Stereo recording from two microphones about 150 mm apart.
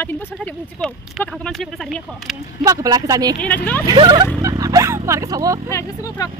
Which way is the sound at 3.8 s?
25° right (ahead or behind).